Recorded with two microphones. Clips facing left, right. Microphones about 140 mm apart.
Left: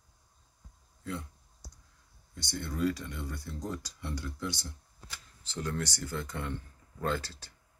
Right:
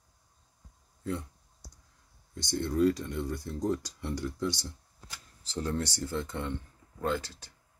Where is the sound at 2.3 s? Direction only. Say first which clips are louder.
Right 7 dB; 40° right (ahead or behind).